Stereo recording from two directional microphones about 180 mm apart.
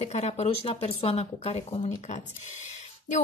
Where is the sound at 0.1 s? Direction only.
35° left (ahead or behind).